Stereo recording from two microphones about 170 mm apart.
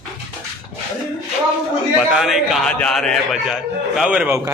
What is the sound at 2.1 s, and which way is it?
A man's voice, centre (ahead or behind).